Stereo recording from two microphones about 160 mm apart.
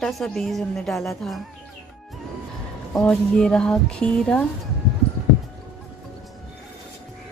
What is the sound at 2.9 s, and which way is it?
Speech, 5° left (ahead or behind).